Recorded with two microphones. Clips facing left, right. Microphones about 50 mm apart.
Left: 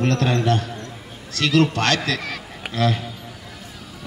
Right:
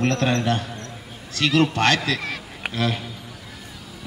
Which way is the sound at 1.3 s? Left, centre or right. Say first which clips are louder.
Left 1 dB; right.